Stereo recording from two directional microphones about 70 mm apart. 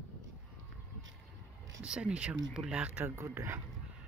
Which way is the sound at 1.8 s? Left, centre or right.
Centre.